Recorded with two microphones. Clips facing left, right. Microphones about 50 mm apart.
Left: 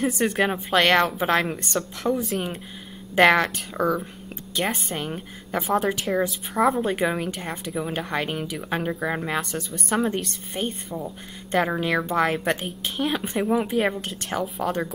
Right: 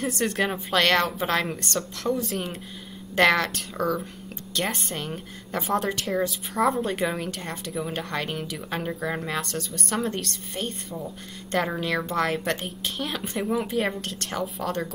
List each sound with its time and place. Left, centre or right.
0.0 s a woman's voice: centre